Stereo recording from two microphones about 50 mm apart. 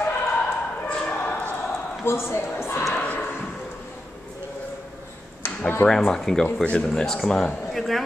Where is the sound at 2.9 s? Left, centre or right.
Left.